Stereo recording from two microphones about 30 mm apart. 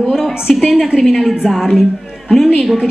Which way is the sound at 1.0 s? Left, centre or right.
Centre.